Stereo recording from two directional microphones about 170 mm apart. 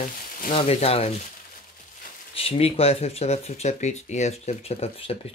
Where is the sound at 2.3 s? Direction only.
35° left (ahead or behind).